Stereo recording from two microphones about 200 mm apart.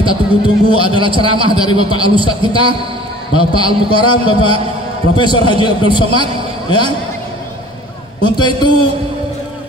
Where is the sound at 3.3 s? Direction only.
90° left.